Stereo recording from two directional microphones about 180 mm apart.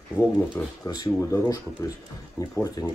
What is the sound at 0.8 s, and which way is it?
Speech, 20° left (ahead or behind).